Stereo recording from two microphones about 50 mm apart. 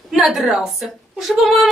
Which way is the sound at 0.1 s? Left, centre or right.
Centre.